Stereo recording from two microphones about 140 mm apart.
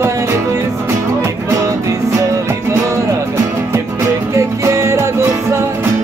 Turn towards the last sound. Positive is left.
turn(degrees=-20)  # may be behind; listen again after turning